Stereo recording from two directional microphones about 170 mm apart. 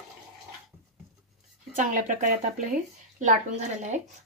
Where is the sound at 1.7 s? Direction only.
50° right (ahead or behind).